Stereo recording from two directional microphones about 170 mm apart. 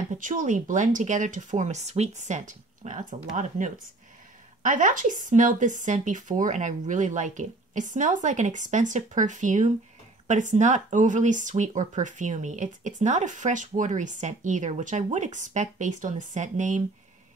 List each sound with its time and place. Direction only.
0.2 s speech: 50° right (ahead or behind)